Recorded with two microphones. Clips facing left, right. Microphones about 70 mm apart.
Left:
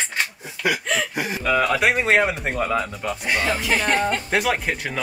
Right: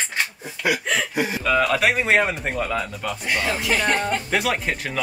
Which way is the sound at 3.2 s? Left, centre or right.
Left.